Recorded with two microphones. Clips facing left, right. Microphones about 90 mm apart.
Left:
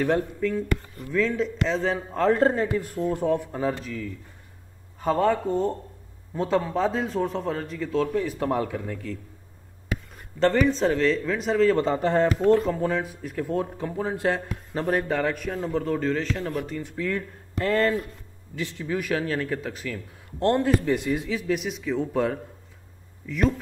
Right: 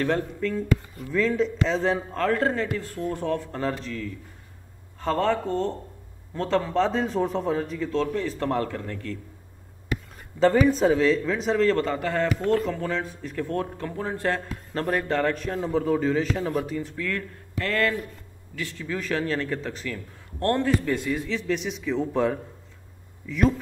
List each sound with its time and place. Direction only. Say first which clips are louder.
0.4 s speech: even; 5° left (ahead or behind)
2.1 s speech: left 8 dB; 20° left (ahead or behind); by 9.2 s 5° left (ahead or behind)
10.4 s speech: right 2 dB; 5° right (ahead or behind)
11.7 s speech: left 3 dB; 20° left (ahead or behind); by 16.5 s 10° right (ahead or behind)
16.9 s speech: left 2 dB; 20° left (ahead or behind)
20.3 s speech: left 2 dB; 20° left (ahead or behind); by 23.5 s centre (ahead or behind)